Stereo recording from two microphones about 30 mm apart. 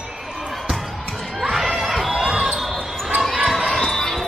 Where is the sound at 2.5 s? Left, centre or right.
Centre.